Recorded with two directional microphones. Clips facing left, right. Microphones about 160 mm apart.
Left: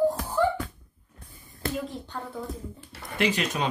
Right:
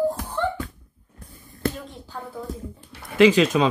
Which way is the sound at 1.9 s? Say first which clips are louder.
Even; centre (ahead or behind).